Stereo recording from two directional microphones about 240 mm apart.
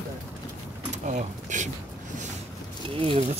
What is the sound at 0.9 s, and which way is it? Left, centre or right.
Speech, right.